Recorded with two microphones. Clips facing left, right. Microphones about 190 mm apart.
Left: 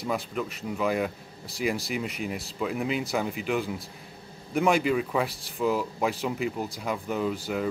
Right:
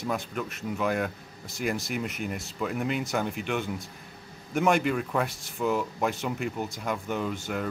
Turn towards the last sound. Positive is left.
turn(degrees=0)  # may be behind; listen again after turning